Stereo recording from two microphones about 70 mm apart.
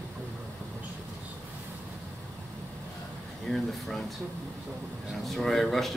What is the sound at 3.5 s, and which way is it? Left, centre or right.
Speech, centre.